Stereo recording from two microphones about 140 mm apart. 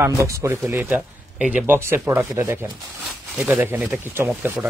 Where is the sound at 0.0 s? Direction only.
20° right (ahead or behind).